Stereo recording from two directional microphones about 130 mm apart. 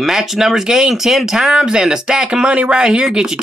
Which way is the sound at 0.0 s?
Centre (ahead or behind).